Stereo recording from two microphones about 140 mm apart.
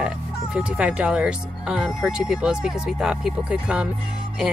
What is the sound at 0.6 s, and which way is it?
Speech, 10° right (ahead or behind).